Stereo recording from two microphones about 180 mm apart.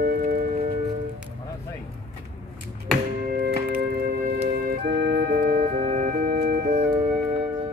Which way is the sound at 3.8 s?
60° right (ahead or behind).